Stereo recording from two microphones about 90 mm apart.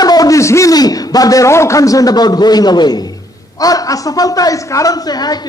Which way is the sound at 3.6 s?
40° left (ahead or behind).